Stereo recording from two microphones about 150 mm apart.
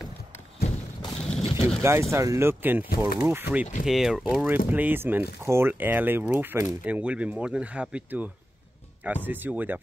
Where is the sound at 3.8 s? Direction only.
Centre (ahead or behind).